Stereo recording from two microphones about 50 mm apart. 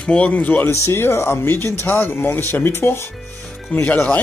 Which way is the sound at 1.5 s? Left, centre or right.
Left.